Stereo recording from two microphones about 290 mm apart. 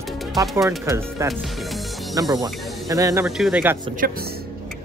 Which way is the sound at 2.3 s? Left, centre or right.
Centre.